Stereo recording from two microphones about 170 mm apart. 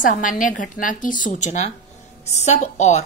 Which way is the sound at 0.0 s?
50° left (ahead or behind).